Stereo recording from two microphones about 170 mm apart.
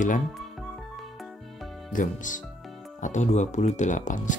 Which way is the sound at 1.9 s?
50° left (ahead or behind).